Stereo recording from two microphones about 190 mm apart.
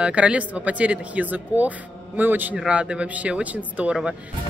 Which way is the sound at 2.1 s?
10° right (ahead or behind).